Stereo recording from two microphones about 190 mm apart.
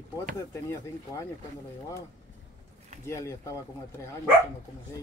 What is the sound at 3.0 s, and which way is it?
Speech, 15° left (ahead or behind).